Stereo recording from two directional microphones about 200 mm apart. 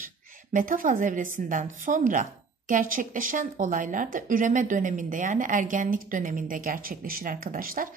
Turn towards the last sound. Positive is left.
turn(degrees=-45)  # may be behind; listen again after turning